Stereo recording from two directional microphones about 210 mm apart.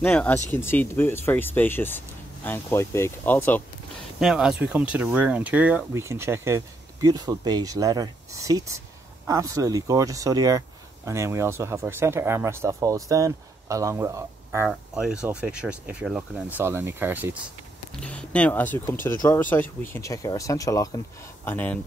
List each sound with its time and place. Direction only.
0.0 s speech: 5° left (ahead or behind)
4.2 s speech: 5° right (ahead or behind)
14.7 s speech: 5° right (ahead or behind)
18.0 s speech: 5° left (ahead or behind)